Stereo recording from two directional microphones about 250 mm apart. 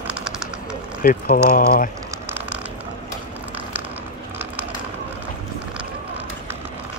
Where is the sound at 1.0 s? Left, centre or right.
Left.